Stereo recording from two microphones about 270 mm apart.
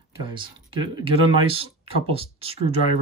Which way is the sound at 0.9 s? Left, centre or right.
Right.